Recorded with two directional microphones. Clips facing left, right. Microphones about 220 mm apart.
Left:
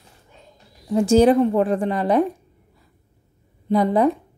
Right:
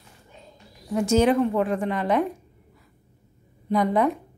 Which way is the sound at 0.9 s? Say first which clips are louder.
Left 5 dB; 30° left (ahead or behind).